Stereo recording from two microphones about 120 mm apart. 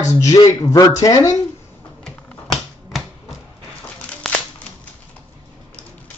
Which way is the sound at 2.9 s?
Centre (ahead or behind).